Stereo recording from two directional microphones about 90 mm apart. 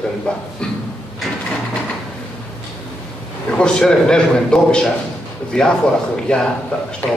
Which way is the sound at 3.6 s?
10° left (ahead or behind).